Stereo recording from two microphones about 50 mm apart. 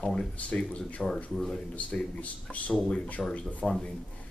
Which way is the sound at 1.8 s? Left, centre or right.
Left.